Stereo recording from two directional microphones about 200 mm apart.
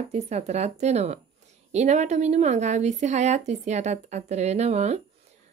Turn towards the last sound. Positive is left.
turn(degrees=-35)  # may be behind; listen again after turning